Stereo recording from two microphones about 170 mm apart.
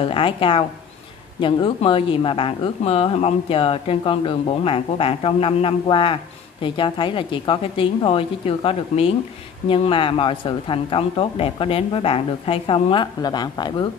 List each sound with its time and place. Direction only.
0.0 s speech: 30° left (ahead or behind)